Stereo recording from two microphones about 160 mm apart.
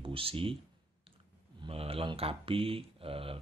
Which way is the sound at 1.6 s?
35° right (ahead or behind).